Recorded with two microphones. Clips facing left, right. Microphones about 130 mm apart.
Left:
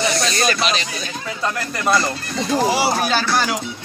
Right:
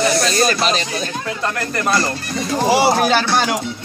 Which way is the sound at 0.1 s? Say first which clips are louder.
Right 3 dB; 35° right (ahead or behind).